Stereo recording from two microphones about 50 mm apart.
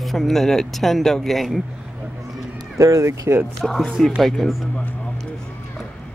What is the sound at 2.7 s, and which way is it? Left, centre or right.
Speech, right.